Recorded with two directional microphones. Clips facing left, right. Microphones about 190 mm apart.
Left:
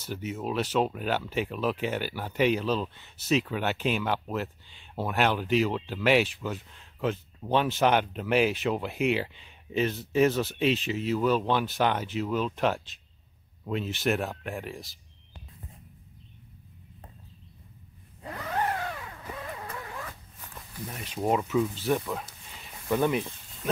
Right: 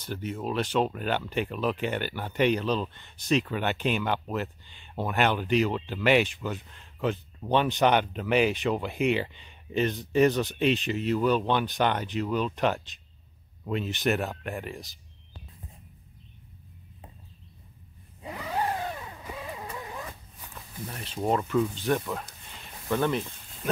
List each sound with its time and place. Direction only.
0.0 s speech: 10° left (ahead or behind)
18.2 s vehicle: 10° right (ahead or behind)
20.9 s speech: 10° left (ahead or behind)